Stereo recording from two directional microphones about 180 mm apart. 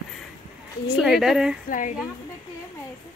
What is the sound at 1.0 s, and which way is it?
Speech, centre (ahead or behind).